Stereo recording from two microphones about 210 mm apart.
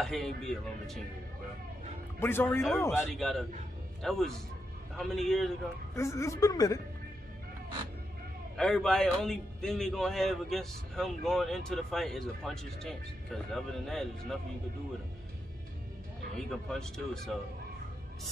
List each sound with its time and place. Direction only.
0.0 s a man's voice: centre (ahead or behind)
2.1 s a woman's voice: 10° left (ahead or behind)
3.2 s a man's voice: centre (ahead or behind)
5.9 s a woman's voice: 15° left (ahead or behind)
8.5 s a man's voice: 5° left (ahead or behind)
16.3 s a man's voice: centre (ahead or behind)